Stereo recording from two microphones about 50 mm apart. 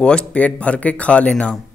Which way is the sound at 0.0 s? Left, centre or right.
Centre.